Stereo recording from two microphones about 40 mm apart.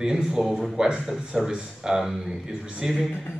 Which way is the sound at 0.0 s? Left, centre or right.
Centre.